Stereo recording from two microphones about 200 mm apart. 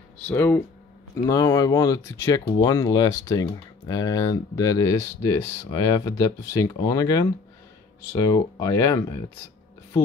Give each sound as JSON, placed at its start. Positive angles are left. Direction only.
{"t": 0.3, "sound": "speech", "side_deg": 10}